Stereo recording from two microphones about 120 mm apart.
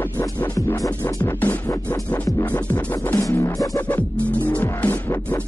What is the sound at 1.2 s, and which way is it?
Music, 15° left (ahead or behind).